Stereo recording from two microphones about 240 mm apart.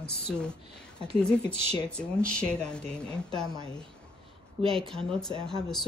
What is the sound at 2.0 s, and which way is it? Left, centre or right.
Speech, centre.